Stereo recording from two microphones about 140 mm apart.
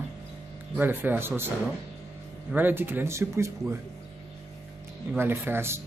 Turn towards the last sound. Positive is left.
turn(degrees=-15)  # may be behind; listen again after turning